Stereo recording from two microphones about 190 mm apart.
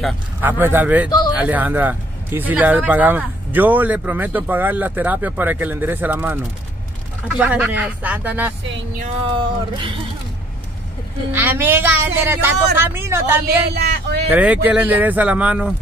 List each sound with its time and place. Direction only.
0.4 s speech: 10° right (ahead or behind)
9.4 s speech: 25° right (ahead or behind)
11.3 s speech: 10° right (ahead or behind)
13.7 s speech: 60° right (ahead or behind)
14.3 s speech: 5° right (ahead or behind)